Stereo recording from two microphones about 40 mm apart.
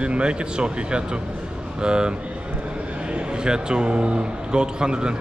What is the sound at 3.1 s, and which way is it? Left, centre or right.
A man's voice, right.